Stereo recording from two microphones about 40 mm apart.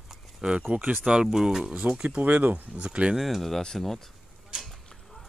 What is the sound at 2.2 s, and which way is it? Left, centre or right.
Speech, right.